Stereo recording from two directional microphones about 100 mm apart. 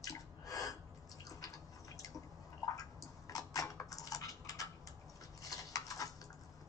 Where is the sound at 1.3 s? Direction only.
35° left (ahead or behind).